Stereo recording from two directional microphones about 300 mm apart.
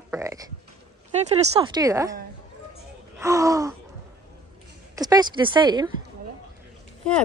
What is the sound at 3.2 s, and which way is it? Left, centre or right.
Speech, centre.